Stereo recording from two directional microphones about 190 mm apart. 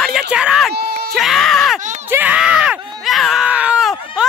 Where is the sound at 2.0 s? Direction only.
10° right (ahead or behind).